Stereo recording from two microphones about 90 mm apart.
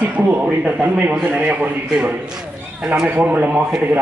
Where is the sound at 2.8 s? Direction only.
15° right (ahead or behind).